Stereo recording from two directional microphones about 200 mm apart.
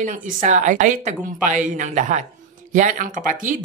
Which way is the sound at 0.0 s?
40° right (ahead or behind).